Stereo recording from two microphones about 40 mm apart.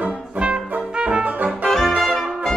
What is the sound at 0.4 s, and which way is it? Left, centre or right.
Brass instrument, right.